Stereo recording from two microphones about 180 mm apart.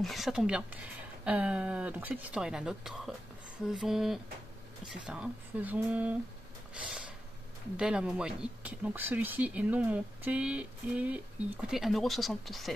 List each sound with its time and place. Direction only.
0.0 s speech: centre (ahead or behind)
6.7 s snort: 5° right (ahead or behind)
7.7 s speech: 5° right (ahead or behind)